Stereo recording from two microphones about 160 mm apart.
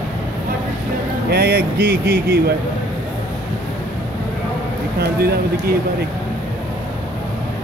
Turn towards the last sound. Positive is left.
turn(degrees=-75)  # may be behind; listen again after turning